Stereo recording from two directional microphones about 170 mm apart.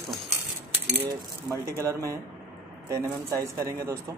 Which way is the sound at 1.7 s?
20° right (ahead or behind).